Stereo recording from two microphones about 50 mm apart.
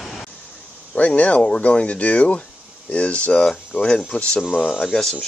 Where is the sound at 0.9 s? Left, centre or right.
Left.